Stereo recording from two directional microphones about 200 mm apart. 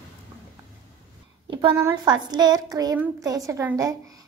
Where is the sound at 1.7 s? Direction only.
15° right (ahead or behind).